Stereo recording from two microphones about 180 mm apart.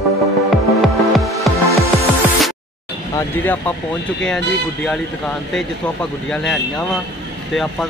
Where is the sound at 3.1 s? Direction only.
15° left (ahead or behind).